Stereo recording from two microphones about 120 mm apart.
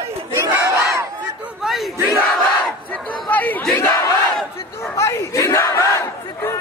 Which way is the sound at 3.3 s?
15° left (ahead or behind).